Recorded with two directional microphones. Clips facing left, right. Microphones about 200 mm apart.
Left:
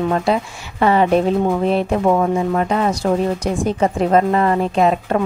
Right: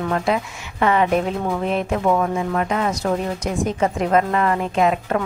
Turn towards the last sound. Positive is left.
turn(degrees=30)  # may be behind; listen again after turning